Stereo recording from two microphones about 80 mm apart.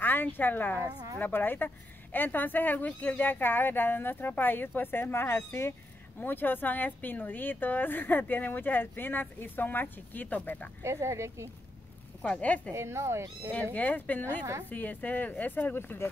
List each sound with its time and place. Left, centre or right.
0.0 s a woman's voice: left
10.8 s speech: right
12.2 s speech: centre
12.7 s speech: right
13.7 s a woman's voice: left